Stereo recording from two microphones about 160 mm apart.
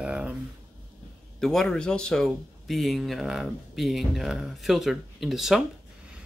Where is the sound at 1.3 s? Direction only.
Centre (ahead or behind).